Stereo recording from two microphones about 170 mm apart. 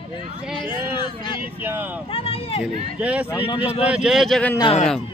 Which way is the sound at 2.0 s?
35° left (ahead or behind).